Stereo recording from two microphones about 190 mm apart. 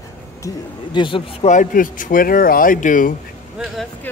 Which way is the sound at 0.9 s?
25° left (ahead or behind).